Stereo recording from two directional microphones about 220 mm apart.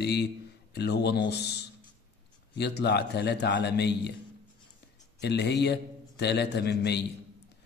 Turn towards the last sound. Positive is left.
turn(degrees=50)  # may be behind; listen again after turning